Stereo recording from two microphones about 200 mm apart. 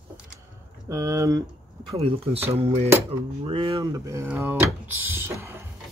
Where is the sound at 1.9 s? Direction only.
30° right (ahead or behind).